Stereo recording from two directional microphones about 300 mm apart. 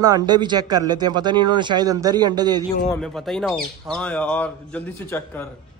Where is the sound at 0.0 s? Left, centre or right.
Centre.